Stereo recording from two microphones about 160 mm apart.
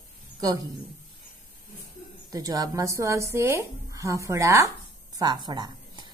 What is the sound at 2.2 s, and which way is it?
A woman's voice, 25° right (ahead or behind).